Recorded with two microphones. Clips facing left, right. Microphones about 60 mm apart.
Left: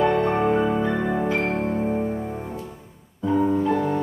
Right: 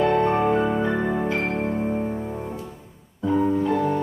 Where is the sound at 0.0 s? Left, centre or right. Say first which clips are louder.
Even; centre.